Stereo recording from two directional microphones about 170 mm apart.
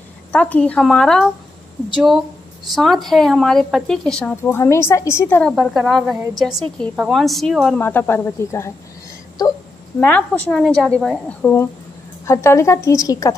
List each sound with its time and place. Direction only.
0.3 s a woman's voice: 5° left (ahead or behind)
5.6 s a woman's voice: centre (ahead or behind); by 8.7 s 15° left (ahead or behind)
9.9 s a woman's voice: 10° left (ahead or behind)